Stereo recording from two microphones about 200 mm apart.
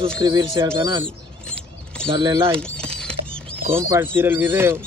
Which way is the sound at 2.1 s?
20° right (ahead or behind).